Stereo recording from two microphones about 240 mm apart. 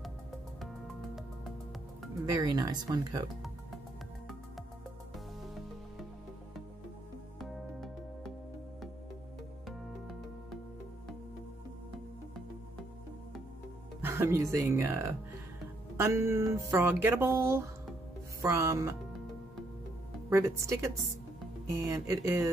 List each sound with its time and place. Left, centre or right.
2.2 s speech: centre
9.7 s music: centre
14.0 s speech: centre
20.2 s speech: centre